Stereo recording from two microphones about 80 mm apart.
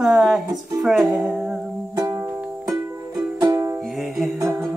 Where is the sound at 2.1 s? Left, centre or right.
Right.